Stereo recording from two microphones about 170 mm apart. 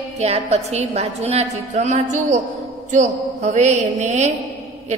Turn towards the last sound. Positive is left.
turn(degrees=-45)  # may be behind; listen again after turning